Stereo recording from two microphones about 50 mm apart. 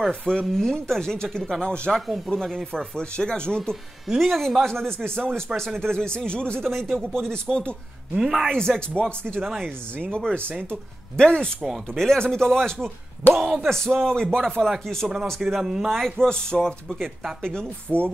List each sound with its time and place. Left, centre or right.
0.1 s speech: centre
2.3 s speech: centre
3.0 s speech: centre
4.2 s speech: centre
6.6 s speech: centre
7.5 s speech: centre
8.5 s speech: centre
9.4 s speech: centre
10.0 s speech: centre
11.6 s speech: centre
12.0 s speech: centre
13.3 s speech: centre
15.6 s speech: centre
16.0 s speech: centre